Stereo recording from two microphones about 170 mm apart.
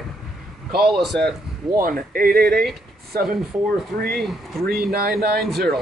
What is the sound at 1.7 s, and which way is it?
Speech, 55° right (ahead or behind).